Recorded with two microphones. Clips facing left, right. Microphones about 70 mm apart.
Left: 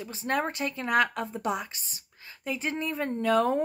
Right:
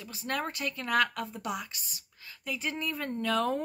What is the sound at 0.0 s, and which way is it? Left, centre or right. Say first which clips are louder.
A woman's voice: left 5 dB; left.